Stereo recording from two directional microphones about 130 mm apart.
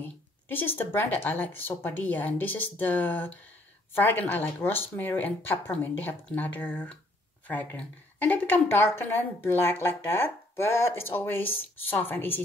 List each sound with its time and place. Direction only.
0.0 s a woman's voice: 15° left (ahead or behind)